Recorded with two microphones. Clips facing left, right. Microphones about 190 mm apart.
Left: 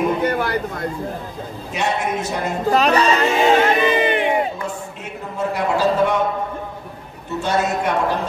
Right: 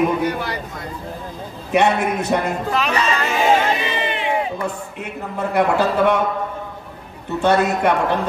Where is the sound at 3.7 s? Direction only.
50° left (ahead or behind).